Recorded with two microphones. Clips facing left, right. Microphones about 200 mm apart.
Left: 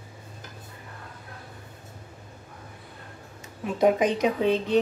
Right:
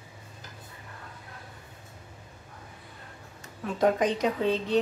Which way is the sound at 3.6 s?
15° left (ahead or behind).